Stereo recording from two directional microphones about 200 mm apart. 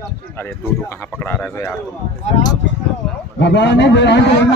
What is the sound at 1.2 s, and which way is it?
Speech, 10° left (ahead or behind).